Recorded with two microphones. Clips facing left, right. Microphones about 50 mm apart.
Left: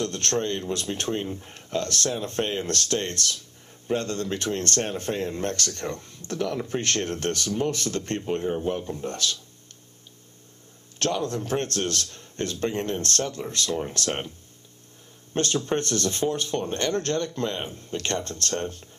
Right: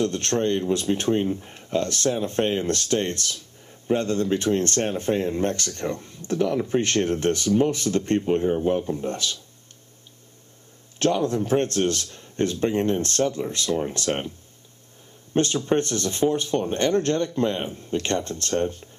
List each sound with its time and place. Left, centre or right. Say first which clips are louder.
0.0 s speech: right 4 dB; right
11.0 s speech: right 5 dB; right
15.3 s speech: right 4 dB; right